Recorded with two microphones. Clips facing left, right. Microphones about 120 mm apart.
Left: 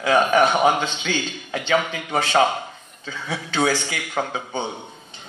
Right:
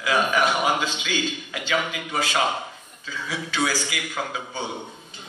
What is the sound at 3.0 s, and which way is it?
A man's voice, 30° left (ahead or behind).